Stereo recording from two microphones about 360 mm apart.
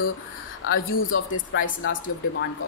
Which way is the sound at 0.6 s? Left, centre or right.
Left.